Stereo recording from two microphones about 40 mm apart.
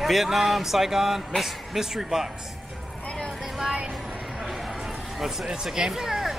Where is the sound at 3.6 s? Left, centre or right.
Right.